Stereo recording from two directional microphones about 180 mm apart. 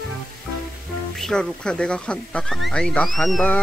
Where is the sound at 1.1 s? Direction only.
Centre (ahead or behind).